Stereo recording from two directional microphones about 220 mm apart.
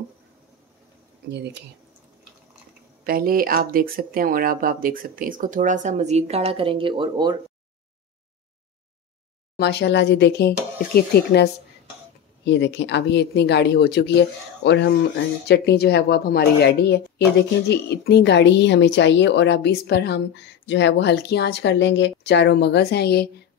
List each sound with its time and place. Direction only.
3.0 s speech: 40° right (ahead or behind); by 7.3 s 20° right (ahead or behind)
9.6 s a woman's voice: 50° left (ahead or behind)